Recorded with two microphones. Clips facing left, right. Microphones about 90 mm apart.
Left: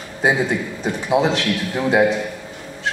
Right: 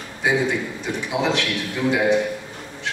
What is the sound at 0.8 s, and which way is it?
A man's voice, 35° left (ahead or behind).